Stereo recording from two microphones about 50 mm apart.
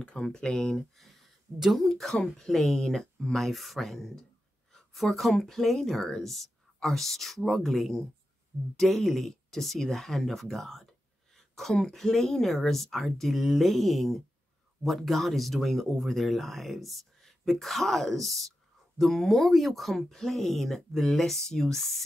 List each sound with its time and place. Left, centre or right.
0.0 s speech: centre
0.9 s a sound: centre
1.6 s a woman's voice: centre